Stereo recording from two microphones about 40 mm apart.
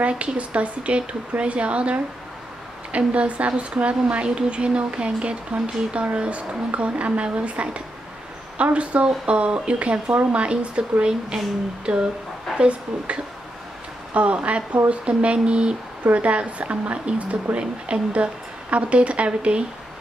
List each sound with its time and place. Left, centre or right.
0.0 s a woman's voice: right
3.1 s a woman's voice: right